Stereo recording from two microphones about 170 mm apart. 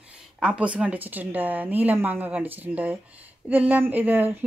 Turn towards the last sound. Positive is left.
turn(degrees=-10)  # may be behind; listen again after turning